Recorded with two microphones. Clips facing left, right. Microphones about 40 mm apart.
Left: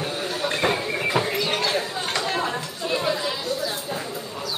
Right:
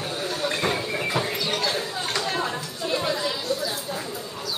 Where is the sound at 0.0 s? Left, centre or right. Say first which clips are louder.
Left 1 dB; centre.